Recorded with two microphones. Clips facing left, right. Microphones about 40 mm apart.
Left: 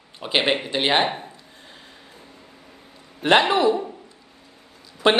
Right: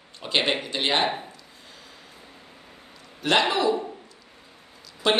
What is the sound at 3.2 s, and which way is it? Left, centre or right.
Speech, left.